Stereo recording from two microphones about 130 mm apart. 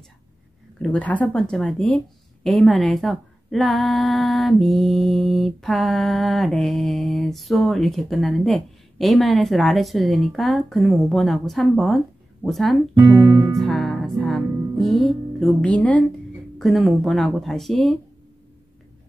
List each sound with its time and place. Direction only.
0.8 s speech: 10° left (ahead or behind)
13.0 s music: 30° right (ahead or behind)
13.6 s music: centre (ahead or behind)
15.0 s speech: 5° left (ahead or behind)